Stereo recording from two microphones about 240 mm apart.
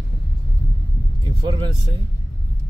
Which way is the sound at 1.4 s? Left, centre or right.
Centre.